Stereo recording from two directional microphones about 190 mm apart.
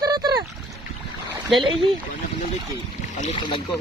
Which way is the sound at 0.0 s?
20° right (ahead or behind).